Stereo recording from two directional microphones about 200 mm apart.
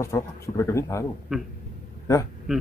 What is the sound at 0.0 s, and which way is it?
Speech, 15° left (ahead or behind).